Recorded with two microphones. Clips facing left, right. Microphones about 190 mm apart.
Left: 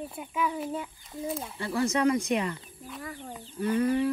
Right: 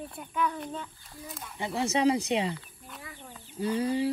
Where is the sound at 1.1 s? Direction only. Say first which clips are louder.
Left 13 dB; 25° left (ahead or behind).